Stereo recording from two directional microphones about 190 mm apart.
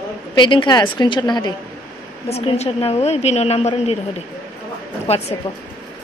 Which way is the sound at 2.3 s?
35° left (ahead or behind).